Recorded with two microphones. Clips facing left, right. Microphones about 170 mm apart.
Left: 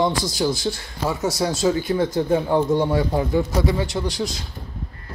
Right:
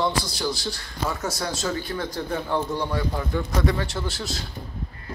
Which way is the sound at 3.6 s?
Centre (ahead or behind).